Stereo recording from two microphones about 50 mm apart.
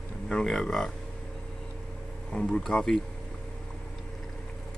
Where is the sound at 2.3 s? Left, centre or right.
Centre.